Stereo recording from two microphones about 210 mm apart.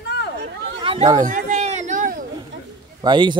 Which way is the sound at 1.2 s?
35° right (ahead or behind).